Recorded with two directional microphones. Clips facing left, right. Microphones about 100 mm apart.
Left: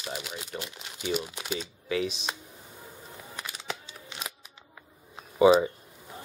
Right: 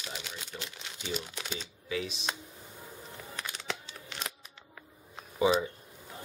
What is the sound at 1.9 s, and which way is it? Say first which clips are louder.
Speech: left 6 dB; 65° left (ahead or behind).